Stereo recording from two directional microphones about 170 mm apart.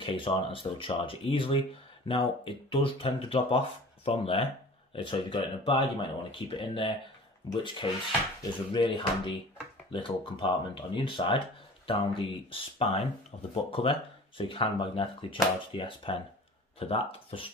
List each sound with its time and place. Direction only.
0.0 s speech: 30° left (ahead or behind)